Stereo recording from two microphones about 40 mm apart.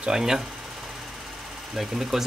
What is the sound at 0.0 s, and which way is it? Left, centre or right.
Speech, centre.